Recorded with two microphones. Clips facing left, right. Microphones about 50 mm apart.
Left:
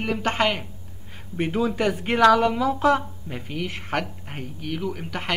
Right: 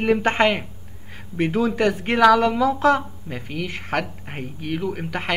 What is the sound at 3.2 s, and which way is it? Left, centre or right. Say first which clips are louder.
Speech: right 2 dB; right.